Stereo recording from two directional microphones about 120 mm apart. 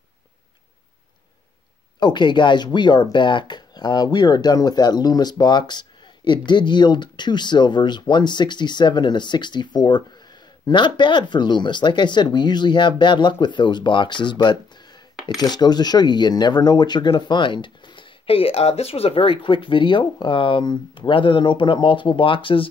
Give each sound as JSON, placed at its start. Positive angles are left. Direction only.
{"t": 2.0, "sound": "speech", "side_deg": 40}